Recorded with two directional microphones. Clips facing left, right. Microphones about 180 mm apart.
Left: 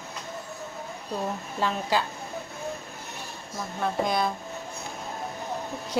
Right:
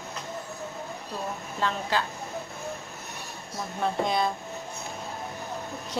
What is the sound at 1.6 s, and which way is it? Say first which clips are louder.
Speech: left 1 dB; 10° left (ahead or behind).